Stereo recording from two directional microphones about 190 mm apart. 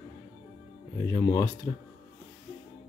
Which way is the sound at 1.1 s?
15° left (ahead or behind).